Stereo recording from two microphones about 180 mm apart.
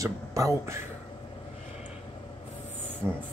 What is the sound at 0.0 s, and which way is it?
Speech, 15° right (ahead or behind).